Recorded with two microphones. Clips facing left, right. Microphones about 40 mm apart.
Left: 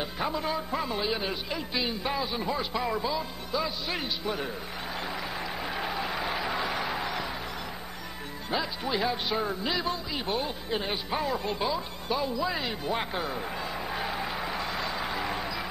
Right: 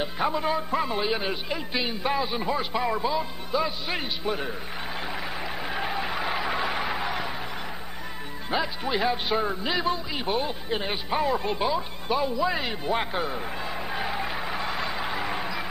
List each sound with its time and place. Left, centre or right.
0.0 s music: right
0.8 s a man's voice: centre
5.0 s a sound: centre
8.5 s speech: centre